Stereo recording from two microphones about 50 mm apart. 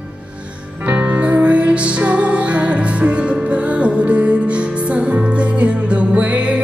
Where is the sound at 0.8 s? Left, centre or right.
Right.